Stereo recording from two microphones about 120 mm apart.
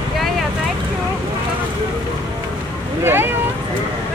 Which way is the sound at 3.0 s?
20° right (ahead or behind).